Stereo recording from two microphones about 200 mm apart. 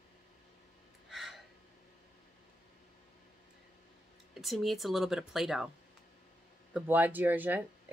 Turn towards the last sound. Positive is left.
turn(degrees=-10)  # may be behind; listen again after turning